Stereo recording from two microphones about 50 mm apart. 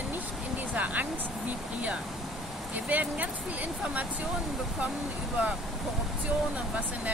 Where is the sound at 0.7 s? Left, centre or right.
Right.